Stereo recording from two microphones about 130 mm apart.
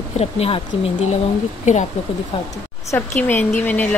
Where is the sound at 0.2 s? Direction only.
50° left (ahead or behind).